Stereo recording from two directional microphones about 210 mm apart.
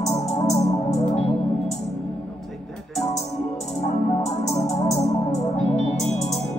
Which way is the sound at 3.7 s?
30° left (ahead or behind).